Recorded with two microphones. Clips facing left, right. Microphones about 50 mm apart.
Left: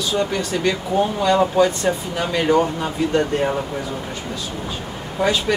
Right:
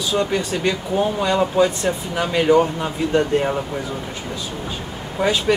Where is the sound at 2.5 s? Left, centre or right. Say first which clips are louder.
Right 2 dB; centre.